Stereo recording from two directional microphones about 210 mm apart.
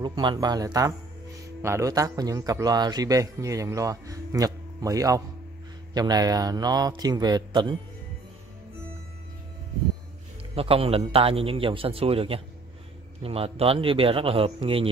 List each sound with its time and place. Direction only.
0.0 s a man's voice: 20° right (ahead or behind)
10.5 s a man's voice: 30° right (ahead or behind)